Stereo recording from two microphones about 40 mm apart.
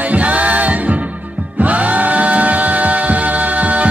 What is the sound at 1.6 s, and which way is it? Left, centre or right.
Music, right.